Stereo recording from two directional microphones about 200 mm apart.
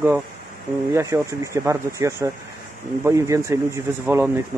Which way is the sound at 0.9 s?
15° right (ahead or behind).